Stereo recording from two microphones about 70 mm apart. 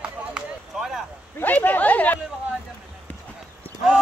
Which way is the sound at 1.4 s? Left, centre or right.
Left.